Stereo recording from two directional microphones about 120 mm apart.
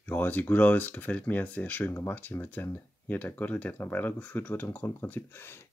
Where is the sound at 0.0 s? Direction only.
15° left (ahead or behind).